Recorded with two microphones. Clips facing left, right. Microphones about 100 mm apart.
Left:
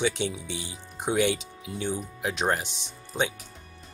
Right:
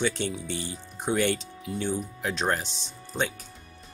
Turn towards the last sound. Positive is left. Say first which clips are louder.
# left 1 dB
turn(degrees=15)  # may be behind; listen again after turning